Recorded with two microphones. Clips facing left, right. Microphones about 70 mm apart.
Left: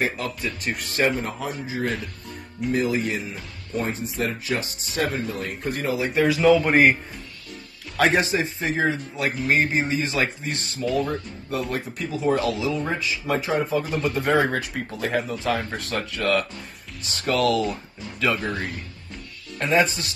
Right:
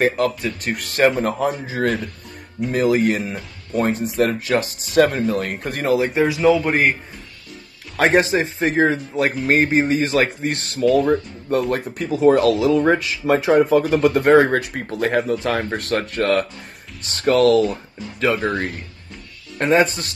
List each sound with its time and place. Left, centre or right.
0.0 s speech: right
2.7 s speech: right
6.1 s speech: centre
6.4 s a man's voice: centre
8.0 s a man's voice: right
10.6 s speech: right
14.3 s a man's voice: right
19.6 s a man's voice: right